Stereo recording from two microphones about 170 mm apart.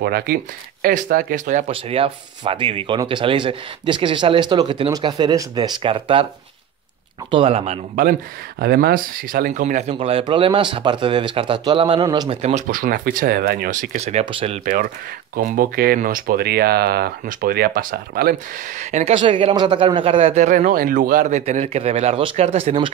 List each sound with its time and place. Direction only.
0.0 s speech: 65° right (ahead or behind)
0.8 s speech: 55° right (ahead or behind)
1.7 s speech: 30° right (ahead or behind)
7.2 s speech: 35° right (ahead or behind)
8.0 s speech: 60° right (ahead or behind)
9.9 s speech: 35° right (ahead or behind)
12.4 s speech: 40° right (ahead or behind)
14.6 s speech: 55° right (ahead or behind)
18.8 s speech: 45° right (ahead or behind)
19.1 s speech: 30° right (ahead or behind)